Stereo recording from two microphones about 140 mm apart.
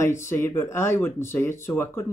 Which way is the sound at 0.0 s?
20° left (ahead or behind).